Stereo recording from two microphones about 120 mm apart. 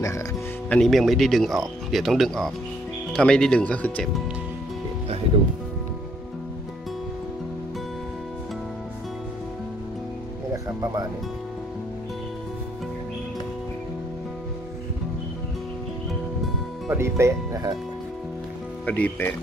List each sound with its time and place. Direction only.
0.7 s speech: 5° left (ahead or behind)
10.5 s music: 30° right (ahead or behind)
16.9 s speech: 20° right (ahead or behind)
18.9 s speech: 10° left (ahead or behind)